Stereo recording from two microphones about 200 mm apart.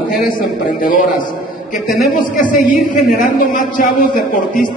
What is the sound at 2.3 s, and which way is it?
A woman's voice, 40° left (ahead or behind).